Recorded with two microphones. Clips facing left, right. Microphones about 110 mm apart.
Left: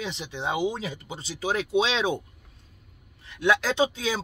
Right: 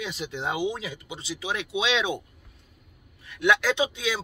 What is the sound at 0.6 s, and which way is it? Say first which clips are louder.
Speech: left 1 dB; 35° left (ahead or behind).